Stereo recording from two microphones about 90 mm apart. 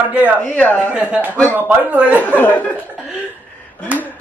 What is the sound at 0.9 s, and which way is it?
A man's voice, 15° right (ahead or behind).